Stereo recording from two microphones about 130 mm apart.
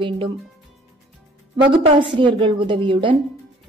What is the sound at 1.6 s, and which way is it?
A woman's voice, 40° right (ahead or behind).